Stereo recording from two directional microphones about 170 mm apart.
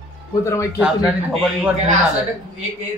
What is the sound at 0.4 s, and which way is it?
Speech, 15° left (ahead or behind).